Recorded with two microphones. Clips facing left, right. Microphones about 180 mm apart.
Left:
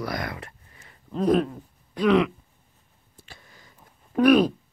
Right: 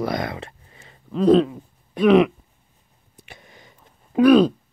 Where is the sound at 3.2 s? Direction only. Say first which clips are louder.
Right 4 dB; 20° right (ahead or behind).